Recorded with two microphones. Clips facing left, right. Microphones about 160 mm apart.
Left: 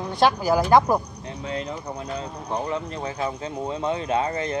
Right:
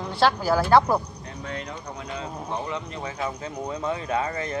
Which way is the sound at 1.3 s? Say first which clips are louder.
Left 4 dB; 25° left (ahead or behind).